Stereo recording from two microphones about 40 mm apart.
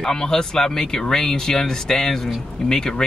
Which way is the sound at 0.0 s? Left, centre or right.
Centre.